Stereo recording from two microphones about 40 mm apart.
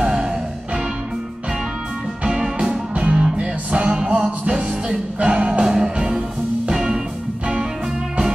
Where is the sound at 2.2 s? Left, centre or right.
Centre.